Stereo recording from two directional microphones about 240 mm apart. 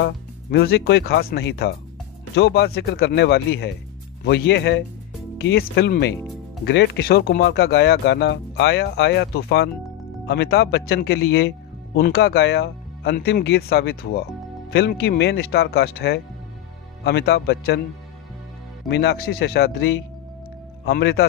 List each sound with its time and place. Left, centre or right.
0.5 s speech: left
18.9 s speech: left